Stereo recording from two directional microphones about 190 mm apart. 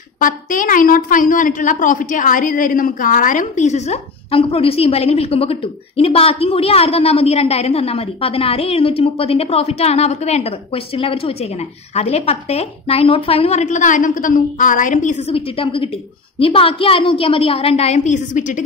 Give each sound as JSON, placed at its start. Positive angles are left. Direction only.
{"t": 0.2, "sound": "a woman's voice", "side_deg": 45}